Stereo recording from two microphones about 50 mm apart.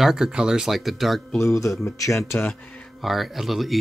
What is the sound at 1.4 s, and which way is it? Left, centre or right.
Speech, left.